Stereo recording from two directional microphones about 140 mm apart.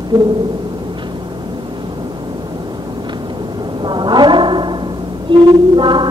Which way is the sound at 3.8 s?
35° right (ahead or behind).